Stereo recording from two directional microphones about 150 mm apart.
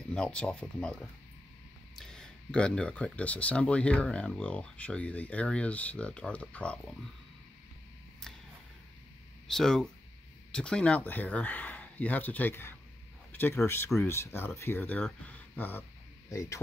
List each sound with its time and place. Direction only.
0.1 s speech: 5° left (ahead or behind)
9.5 s speech: centre (ahead or behind)
15.2 s a sound: 10° left (ahead or behind)
16.3 s speech: 20° left (ahead or behind)